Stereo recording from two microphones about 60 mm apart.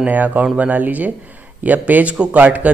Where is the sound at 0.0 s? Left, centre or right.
Right.